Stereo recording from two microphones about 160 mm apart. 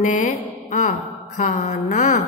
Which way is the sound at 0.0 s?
55° left (ahead or behind).